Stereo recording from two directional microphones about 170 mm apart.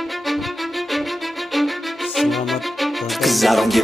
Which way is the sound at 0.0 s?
Centre (ahead or behind).